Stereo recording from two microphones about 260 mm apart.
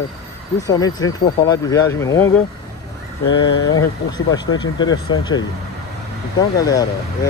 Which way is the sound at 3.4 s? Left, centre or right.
Centre.